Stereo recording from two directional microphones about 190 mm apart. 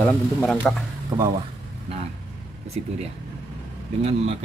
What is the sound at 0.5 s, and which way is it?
Speech, centre (ahead or behind).